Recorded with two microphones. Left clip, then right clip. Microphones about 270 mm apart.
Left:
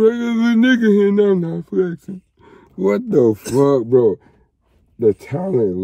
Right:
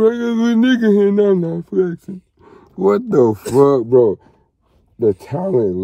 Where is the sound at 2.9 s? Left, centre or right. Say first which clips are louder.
Right 1 dB; right.